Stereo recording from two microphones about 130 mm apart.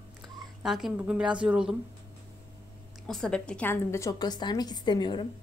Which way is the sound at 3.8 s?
25° left (ahead or behind).